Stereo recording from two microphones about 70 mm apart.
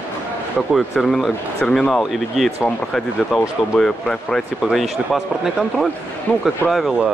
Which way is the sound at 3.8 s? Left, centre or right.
Centre.